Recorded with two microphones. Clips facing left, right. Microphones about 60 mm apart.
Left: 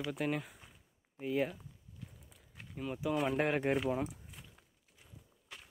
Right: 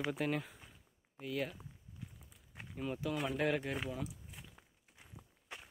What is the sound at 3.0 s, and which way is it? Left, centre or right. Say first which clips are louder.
Speech: left 6 dB; centre.